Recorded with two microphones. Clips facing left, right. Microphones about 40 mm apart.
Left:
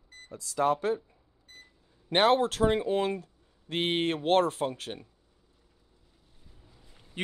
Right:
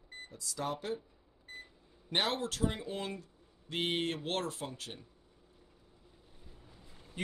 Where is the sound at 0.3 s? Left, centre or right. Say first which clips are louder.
Left 11 dB; left.